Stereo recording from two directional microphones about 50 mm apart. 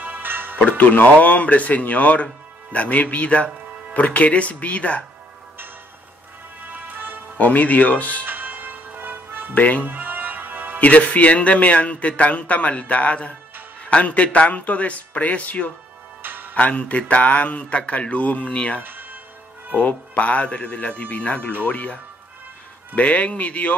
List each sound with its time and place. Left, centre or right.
0.0 s music: right
0.7 s a man's voice: left
6.7 s music: right
7.3 s speech: left
8.3 s music: right
9.5 s speech: left
9.8 s music: right
10.8 s a man's voice: left
16.2 s music: right
16.5 s a man's voice: left
18.8 s music: right
19.7 s a man's voice: left
22.9 s a man's voice: left